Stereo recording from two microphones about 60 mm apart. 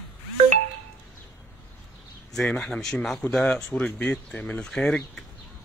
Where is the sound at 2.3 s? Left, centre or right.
Centre.